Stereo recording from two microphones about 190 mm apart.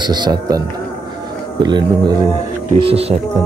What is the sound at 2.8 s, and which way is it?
Speech, 30° right (ahead or behind).